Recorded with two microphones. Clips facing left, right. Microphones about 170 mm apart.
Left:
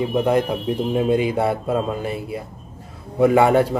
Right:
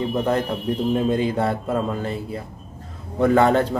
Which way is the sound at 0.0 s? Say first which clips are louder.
Left 3 dB; 10° left (ahead or behind).